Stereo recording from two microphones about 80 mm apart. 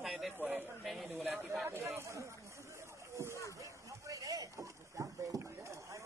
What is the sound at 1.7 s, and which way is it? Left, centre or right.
Speech, right.